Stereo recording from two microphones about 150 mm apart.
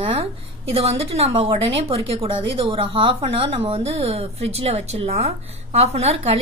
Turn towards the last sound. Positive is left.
turn(degrees=-45)  # may be behind; listen again after turning